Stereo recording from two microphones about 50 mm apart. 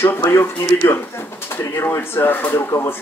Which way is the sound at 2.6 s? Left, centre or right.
Left.